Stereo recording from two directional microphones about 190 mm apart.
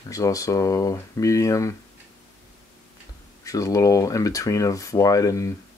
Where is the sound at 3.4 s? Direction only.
15° left (ahead or behind).